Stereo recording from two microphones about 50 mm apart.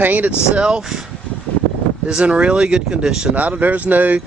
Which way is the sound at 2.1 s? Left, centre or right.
Right.